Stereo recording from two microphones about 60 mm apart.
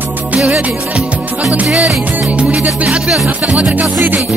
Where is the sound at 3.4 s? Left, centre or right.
Centre.